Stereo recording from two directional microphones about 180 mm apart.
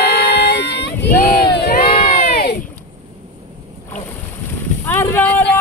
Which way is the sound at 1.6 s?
60° left (ahead or behind).